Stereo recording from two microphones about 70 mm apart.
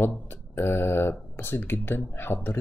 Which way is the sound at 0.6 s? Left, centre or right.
Left.